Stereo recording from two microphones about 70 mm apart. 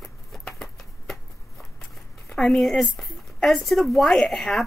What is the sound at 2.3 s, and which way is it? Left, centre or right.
Speech, centre.